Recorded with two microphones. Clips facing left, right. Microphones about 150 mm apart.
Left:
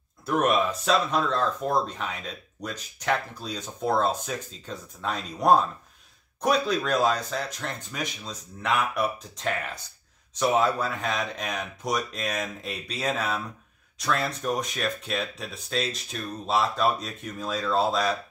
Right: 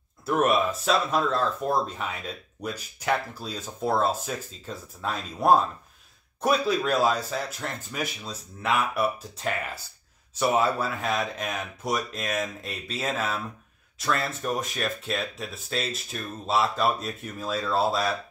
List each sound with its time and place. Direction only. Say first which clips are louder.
0.2 s speech: even; 5° right (ahead or behind)